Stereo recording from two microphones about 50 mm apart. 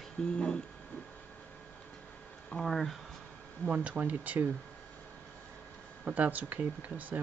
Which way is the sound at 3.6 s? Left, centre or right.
Right.